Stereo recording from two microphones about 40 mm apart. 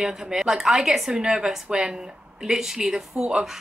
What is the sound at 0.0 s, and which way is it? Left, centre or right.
A woman's voice, centre.